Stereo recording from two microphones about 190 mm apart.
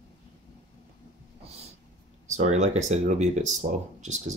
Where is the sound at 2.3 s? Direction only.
40° right (ahead or behind).